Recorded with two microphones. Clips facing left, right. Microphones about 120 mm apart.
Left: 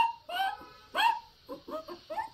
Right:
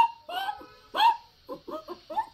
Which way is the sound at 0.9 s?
15° right (ahead or behind).